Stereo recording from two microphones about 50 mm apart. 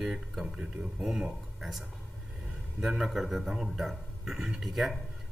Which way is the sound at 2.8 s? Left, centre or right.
Centre.